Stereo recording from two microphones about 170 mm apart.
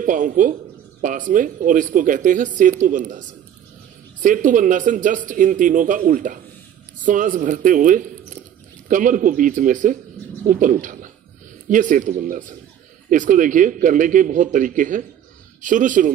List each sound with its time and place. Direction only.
0.0 s speech: 50° right (ahead or behind)